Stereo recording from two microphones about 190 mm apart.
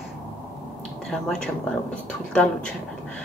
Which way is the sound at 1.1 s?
5° left (ahead or behind).